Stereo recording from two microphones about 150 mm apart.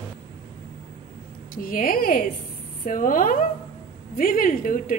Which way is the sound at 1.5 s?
70° left (ahead or behind).